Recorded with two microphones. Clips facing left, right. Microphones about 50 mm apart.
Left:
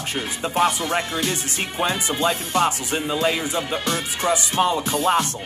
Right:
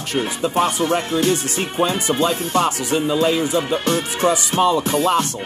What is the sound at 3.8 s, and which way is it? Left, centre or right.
Speech, right.